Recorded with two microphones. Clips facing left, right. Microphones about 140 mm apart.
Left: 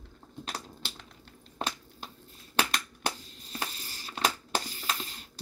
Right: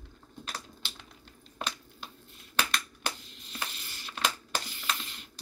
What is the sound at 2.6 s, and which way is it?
Crushing, 35° left (ahead or behind).